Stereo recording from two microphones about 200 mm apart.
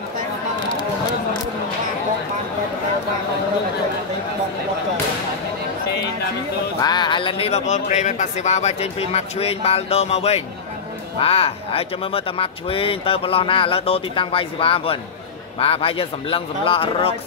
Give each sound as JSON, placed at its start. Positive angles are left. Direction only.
{"t": 6.8, "sound": "speech", "side_deg": 20}